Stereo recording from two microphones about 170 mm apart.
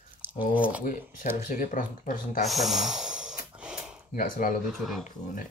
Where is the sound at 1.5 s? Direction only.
50° left (ahead or behind).